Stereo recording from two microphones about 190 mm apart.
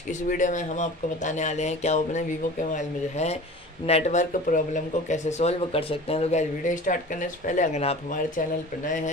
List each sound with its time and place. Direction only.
0.3 s speech: 40° left (ahead or behind)